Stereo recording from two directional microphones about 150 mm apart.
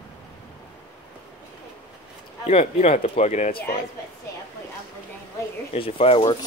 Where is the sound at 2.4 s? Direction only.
45° left (ahead or behind).